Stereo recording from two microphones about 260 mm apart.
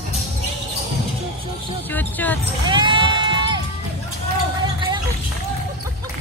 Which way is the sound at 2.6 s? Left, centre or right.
Centre.